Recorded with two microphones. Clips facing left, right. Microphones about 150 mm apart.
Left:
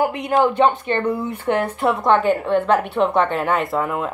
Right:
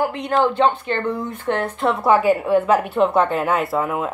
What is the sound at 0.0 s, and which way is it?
Speech, 10° left (ahead or behind).